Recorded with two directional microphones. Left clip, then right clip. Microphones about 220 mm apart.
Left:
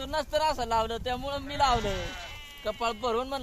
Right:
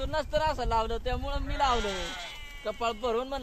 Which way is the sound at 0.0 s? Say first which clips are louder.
Left 1 dB; 25° left (ahead or behind).